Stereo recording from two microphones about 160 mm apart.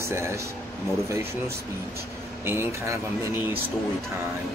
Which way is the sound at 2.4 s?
15° right (ahead or behind).